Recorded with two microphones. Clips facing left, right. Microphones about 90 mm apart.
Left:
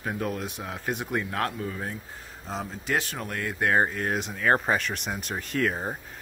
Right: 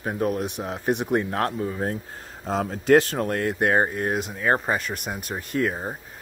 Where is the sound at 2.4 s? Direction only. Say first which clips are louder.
Right 9 dB; 50° right (ahead or behind).